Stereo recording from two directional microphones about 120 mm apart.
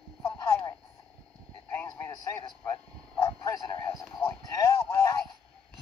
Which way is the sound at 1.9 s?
20° left (ahead or behind).